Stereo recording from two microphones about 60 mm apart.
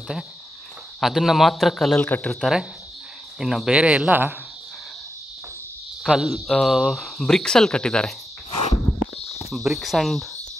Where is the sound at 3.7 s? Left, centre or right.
Centre.